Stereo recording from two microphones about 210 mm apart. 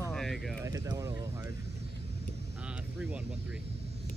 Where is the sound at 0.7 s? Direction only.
15° right (ahead or behind).